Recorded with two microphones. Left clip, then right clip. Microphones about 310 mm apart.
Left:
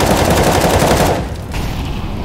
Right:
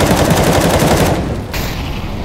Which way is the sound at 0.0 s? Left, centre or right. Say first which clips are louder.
Even; centre.